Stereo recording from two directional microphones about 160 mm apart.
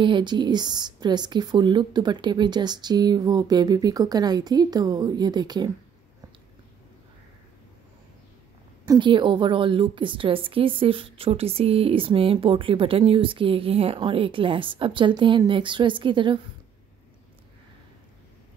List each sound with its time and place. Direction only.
0.0 s speech: 30° right (ahead or behind)
8.8 s a woman's voice: 30° right (ahead or behind)